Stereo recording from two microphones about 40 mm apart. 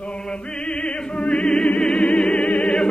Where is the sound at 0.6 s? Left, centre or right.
Left.